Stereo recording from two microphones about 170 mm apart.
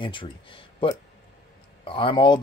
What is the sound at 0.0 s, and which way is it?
Speech, 30° left (ahead or behind).